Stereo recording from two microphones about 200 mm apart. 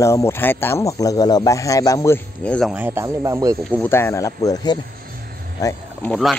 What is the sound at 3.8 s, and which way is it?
Speech, 10° left (ahead or behind).